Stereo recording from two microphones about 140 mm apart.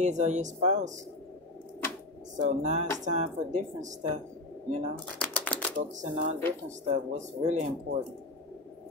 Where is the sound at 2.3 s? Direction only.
60° right (ahead or behind).